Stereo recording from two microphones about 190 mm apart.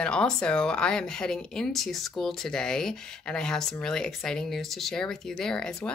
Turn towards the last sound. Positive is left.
turn(degrees=5)  # may be behind; listen again after turning